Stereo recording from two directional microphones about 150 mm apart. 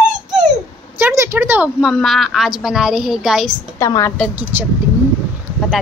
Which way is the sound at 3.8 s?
20° left (ahead or behind).